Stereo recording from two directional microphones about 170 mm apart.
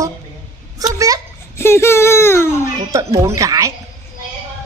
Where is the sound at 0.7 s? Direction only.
20° right (ahead or behind).